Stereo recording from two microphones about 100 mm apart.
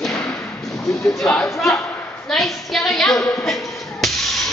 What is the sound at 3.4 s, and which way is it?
Music, centre (ahead or behind).